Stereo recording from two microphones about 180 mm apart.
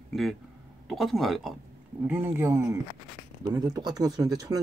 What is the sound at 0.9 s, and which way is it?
Speech, centre (ahead or behind).